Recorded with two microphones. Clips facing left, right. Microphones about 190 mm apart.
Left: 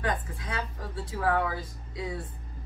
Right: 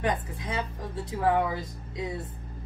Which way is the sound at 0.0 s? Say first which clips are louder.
Right 2 dB; 20° right (ahead or behind).